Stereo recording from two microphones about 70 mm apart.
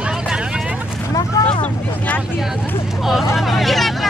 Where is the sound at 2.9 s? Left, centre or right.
Centre.